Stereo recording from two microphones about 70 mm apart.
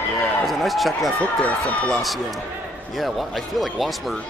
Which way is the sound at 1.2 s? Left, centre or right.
Centre.